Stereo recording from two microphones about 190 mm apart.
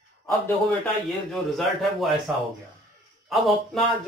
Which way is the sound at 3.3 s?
Centre (ahead or behind).